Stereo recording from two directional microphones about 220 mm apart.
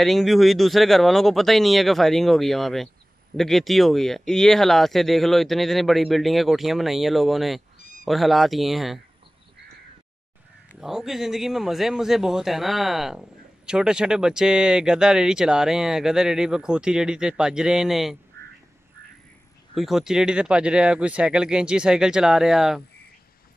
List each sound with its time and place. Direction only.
0.0 s speech: centre (ahead or behind)
10.7 s speech: centre (ahead or behind)
19.7 s speech: centre (ahead or behind)